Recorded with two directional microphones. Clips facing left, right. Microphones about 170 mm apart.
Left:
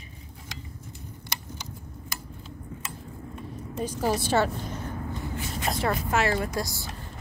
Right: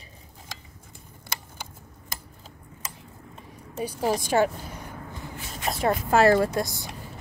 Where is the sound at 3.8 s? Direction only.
10° right (ahead or behind).